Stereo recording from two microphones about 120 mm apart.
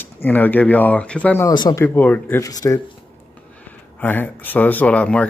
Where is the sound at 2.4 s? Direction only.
30° left (ahead or behind).